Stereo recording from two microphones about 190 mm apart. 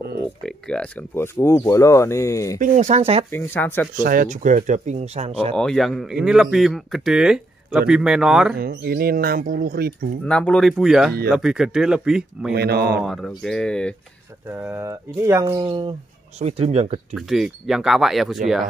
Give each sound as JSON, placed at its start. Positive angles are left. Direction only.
{"t": 0.7, "sound": "speech", "side_deg": 10}
{"t": 2.6, "sound": "speech", "side_deg": -40}
{"t": 3.3, "sound": "speech", "side_deg": 10}
{"t": 4.0, "sound": "speech", "side_deg": -45}
{"t": 5.6, "sound": "speech", "side_deg": 0}
{"t": 8.5, "sound": "speech", "side_deg": -50}
{"t": 10.2, "sound": "speech", "side_deg": 5}
{"t": 12.5, "sound": "speech", "side_deg": -55}
{"t": 13.0, "sound": "speech", "side_deg": 0}
{"t": 14.5, "sound": "speech", "side_deg": -10}
{"t": 16.3, "sound": "speech", "side_deg": -35}
{"t": 17.1, "sound": "speech", "side_deg": 0}